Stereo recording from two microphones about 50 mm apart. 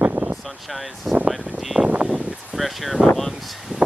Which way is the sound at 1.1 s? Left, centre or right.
Centre.